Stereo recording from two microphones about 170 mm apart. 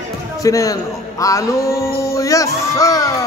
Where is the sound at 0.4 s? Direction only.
20° left (ahead or behind).